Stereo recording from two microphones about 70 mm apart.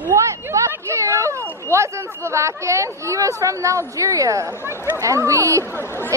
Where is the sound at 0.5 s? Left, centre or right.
Right.